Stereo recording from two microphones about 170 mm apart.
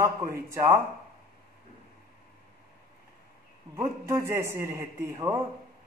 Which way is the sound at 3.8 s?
15° right (ahead or behind).